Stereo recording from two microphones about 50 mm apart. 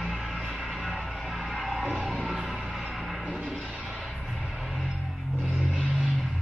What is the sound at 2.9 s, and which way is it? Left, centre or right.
Music, centre.